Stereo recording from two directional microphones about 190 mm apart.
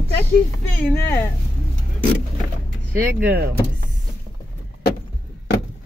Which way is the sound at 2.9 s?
10° right (ahead or behind).